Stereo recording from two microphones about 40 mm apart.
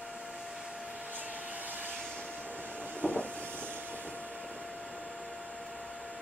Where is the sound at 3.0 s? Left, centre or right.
Right.